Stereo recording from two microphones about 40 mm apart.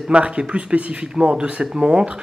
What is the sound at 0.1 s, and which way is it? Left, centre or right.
Speech, right.